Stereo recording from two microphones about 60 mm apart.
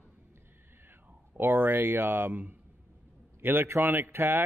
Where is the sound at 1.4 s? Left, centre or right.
Right.